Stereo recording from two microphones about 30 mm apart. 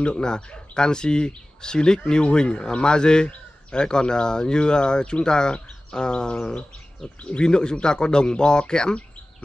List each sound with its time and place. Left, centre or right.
0.0 s speech: left
7.2 s speech: left
7.4 s speech: left